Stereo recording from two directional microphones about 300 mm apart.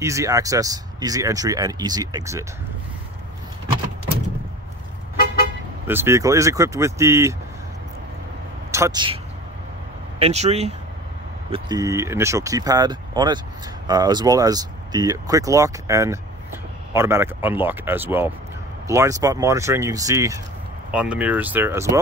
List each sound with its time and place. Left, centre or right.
0.0 s speech: centre
5.9 s speech: centre
8.7 s speech: centre